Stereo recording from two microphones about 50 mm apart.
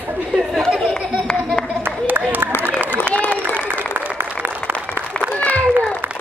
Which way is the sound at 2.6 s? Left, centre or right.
Right.